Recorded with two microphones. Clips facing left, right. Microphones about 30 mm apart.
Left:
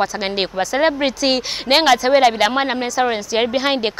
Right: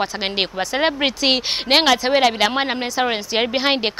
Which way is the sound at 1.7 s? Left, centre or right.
Centre.